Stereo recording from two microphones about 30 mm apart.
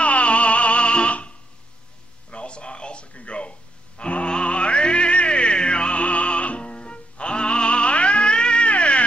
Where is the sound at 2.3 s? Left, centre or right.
Left.